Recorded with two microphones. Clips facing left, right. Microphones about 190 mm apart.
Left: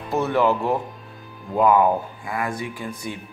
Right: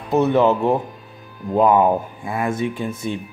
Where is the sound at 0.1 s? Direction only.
20° right (ahead or behind).